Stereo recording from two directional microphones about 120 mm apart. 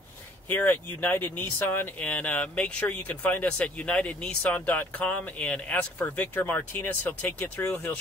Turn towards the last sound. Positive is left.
turn(degrees=15)  # may be behind; listen again after turning